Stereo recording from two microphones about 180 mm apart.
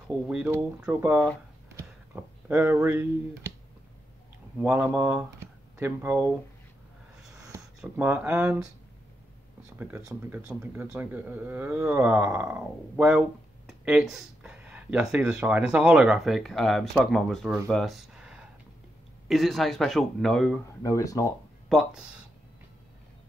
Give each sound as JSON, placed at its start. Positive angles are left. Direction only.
{"t": 0.3, "sound": "speech", "side_deg": -5}
{"t": 4.6, "sound": "speech", "side_deg": -5}
{"t": 7.8, "sound": "speech", "side_deg": -5}
{"t": 9.8, "sound": "speech", "side_deg": -10}
{"t": 20.8, "sound": "speech", "side_deg": 20}
{"t": 21.6, "sound": "speech", "side_deg": 0}